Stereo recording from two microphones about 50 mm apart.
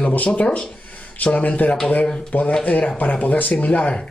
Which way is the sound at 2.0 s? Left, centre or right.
Centre.